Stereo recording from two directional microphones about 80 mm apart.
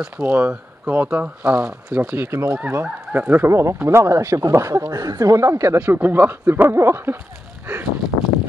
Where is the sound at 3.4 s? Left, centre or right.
Right.